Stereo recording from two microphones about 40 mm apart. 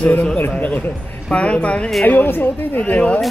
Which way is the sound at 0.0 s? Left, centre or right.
Left.